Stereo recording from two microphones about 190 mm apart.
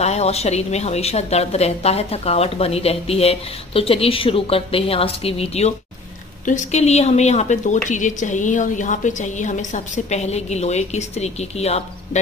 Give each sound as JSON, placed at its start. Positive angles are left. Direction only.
{"t": 0.0, "sound": "a woman's voice", "side_deg": 35}